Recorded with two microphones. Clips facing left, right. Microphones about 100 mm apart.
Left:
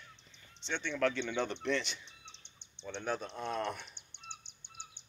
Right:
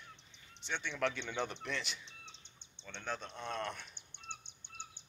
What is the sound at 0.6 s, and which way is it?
Speech, 10° right (ahead or behind).